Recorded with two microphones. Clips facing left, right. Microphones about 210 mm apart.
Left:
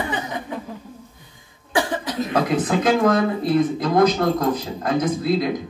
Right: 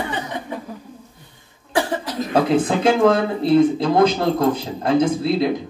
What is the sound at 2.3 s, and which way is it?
Speech, 30° right (ahead or behind).